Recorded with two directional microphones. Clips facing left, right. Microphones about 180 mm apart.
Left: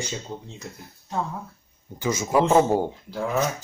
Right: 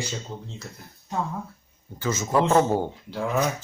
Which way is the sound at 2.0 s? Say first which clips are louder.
Left 2 dB; 10° left (ahead or behind).